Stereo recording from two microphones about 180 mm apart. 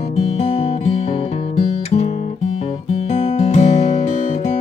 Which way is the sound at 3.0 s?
40° left (ahead or behind).